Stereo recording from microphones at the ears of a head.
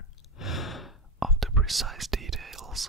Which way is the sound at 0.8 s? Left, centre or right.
Centre.